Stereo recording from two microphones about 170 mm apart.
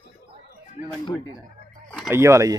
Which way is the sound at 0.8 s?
50° left (ahead or behind).